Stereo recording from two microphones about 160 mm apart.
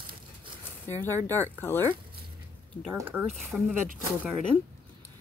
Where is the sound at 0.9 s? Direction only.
15° left (ahead or behind).